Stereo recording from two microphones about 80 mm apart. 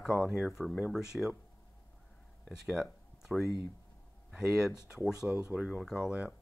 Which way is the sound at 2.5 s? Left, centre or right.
Centre.